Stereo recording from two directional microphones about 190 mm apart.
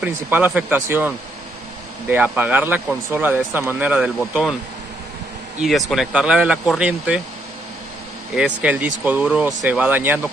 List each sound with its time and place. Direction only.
0.0 s speech: 10° right (ahead or behind)
5.6 s speech: centre (ahead or behind)
8.4 s speech: 5° right (ahead or behind)